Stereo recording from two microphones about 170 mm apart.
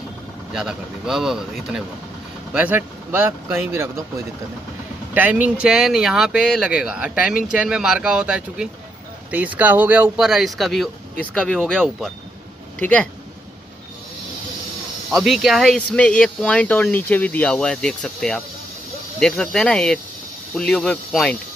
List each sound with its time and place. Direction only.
0.5 s speech: 5° right (ahead or behind)
5.1 s speech: 10° right (ahead or behind); by 13.1 s 5° left (ahead or behind)
15.0 s speech: centre (ahead or behind)